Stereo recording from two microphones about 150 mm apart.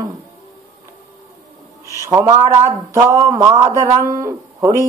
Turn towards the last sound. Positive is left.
turn(degrees=-20)  # may be behind; listen again after turning